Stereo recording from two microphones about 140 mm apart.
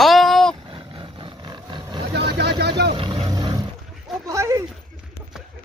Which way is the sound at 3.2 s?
25° right (ahead or behind).